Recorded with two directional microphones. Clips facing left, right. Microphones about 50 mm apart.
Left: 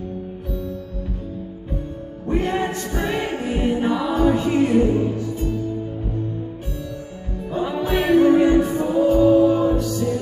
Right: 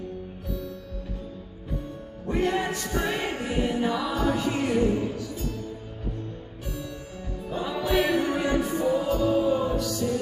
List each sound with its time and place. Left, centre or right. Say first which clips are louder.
2.2 s music: left 4 dB; left
7.6 s music: left 3 dB; left